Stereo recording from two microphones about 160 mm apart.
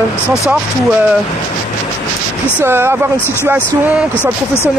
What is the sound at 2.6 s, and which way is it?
Speech, 15° right (ahead or behind).